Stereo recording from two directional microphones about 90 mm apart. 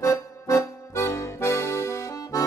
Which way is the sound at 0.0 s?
35° left (ahead or behind).